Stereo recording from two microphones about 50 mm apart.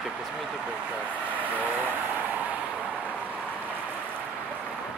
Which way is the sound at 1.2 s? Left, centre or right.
Right.